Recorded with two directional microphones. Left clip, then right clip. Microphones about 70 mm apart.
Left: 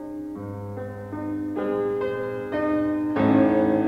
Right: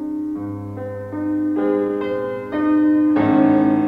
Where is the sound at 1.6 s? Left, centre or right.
Right.